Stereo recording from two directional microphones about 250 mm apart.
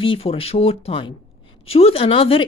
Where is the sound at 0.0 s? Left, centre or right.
Left.